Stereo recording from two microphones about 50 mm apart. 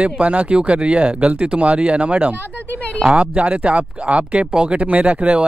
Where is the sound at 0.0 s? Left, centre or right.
Right.